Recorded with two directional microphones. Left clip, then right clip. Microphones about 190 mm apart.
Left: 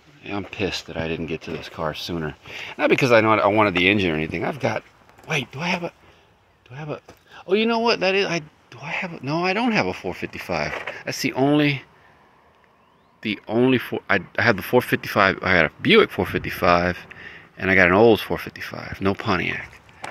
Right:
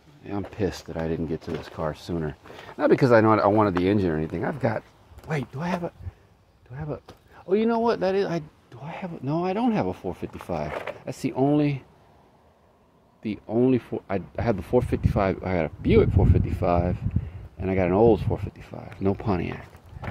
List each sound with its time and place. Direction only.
0.2 s speech: 5° right (ahead or behind)
1.8 s speech: centre (ahead or behind)
3.0 s speech: centre (ahead or behind)
4.1 s speech: 15° left (ahead or behind)
4.4 s speech: 5° right (ahead or behind)
13.2 s speech: centre (ahead or behind); by 19.7 s 15° right (ahead or behind)